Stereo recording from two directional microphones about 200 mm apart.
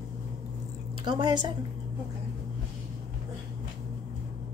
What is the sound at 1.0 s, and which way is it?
Speech, 20° right (ahead or behind).